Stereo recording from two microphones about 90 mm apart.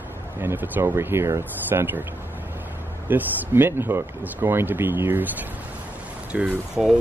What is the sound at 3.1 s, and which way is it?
Speech, 25° right (ahead or behind).